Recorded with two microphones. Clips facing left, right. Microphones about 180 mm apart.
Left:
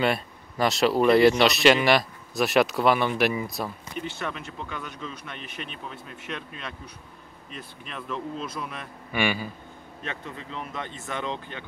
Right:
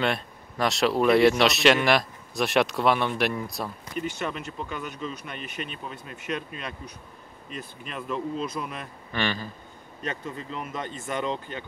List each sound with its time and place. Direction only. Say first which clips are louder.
0.0 s speech: left 2 dB; centre (ahead or behind)
9.1 s speech: left 3 dB; 10° left (ahead or behind)
10.2 s speech: right 2 dB; 5° right (ahead or behind)